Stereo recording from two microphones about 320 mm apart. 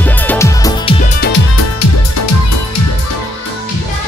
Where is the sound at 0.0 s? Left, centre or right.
Centre.